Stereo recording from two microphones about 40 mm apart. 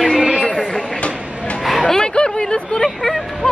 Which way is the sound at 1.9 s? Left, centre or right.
Left.